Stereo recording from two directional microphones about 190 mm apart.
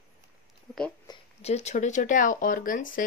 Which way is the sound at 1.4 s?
35° left (ahead or behind).